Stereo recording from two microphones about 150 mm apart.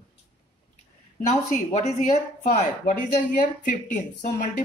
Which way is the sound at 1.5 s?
50° left (ahead or behind).